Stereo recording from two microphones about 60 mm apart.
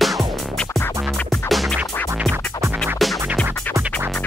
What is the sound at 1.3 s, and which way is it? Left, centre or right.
Music, centre.